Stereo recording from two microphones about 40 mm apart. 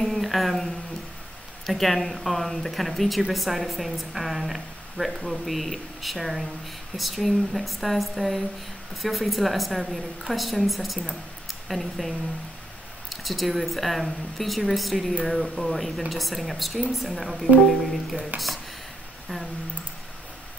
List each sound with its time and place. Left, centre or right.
0.0 s a sound: centre
1.7 s a woman's voice: centre
17.5 s speech: right